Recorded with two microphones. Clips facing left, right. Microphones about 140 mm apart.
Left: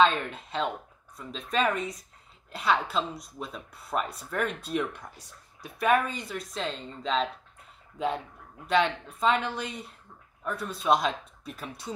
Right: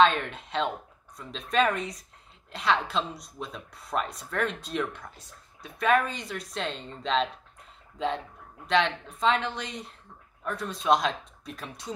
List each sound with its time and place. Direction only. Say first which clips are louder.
0.0 s speech: right 1 dB; centre (ahead or behind)
8.6 s speech: even; 5° left (ahead or behind)